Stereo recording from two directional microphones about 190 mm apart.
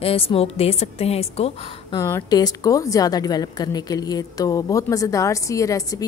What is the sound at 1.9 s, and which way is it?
A woman's voice, 15° left (ahead or behind).